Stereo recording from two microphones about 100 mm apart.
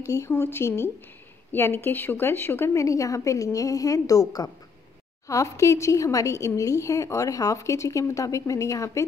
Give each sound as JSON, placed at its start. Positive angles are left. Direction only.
{"t": 0.0, "sound": "speech", "side_deg": 30}